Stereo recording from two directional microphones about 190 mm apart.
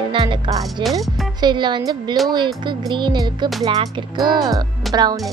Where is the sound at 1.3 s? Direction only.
25° right (ahead or behind).